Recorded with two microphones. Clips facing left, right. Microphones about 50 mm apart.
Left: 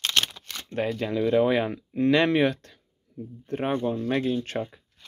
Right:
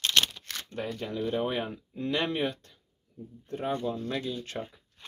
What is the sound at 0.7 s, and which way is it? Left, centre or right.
Speech, left.